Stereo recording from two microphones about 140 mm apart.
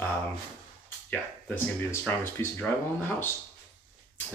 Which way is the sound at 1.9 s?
20° left (ahead or behind).